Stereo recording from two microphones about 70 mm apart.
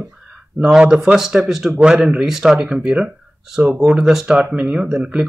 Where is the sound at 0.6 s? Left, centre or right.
Centre.